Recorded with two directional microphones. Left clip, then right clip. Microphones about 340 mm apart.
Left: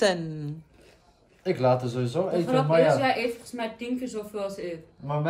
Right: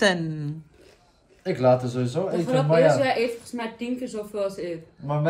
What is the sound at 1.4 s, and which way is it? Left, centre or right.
A man's voice, centre.